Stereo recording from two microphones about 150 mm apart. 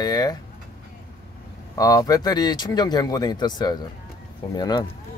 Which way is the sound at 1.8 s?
25° left (ahead or behind).